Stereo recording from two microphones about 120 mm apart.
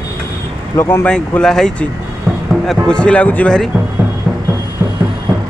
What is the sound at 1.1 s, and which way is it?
Speech, 5° left (ahead or behind).